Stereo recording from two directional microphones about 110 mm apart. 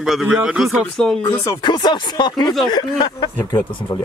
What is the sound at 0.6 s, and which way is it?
Speech, 5° left (ahead or behind).